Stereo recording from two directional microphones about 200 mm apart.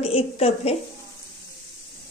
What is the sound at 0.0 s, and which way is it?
Speech, 30° left (ahead or behind).